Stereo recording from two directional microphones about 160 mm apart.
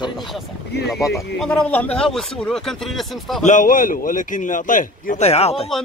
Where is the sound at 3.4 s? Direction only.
55° left (ahead or behind); by 5.7 s 40° left (ahead or behind).